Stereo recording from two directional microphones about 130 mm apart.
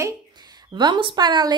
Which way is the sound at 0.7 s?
35° right (ahead or behind).